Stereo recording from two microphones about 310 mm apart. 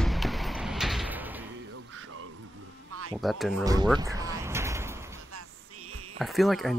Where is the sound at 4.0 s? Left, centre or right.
Centre.